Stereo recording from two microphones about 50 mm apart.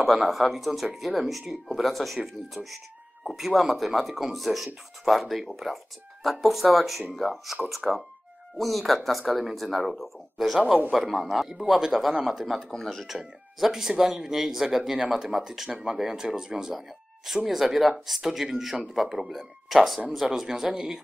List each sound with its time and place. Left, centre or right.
0.0 s speech: centre
13.2 s speech: centre
17.5 s speech: centre